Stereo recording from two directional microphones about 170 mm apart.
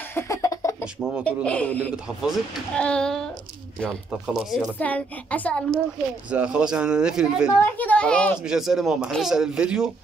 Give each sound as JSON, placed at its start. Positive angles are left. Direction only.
{"t": 0.1, "sound": "a sound", "side_deg": 20}
{"t": 1.2, "sound": "a woman's voice", "side_deg": 10}
{"t": 4.7, "sound": "a woman's voice", "side_deg": 10}
{"t": 6.3, "sound": "a man's voice", "side_deg": -5}
{"t": 7.8, "sound": "a woman's voice", "side_deg": 10}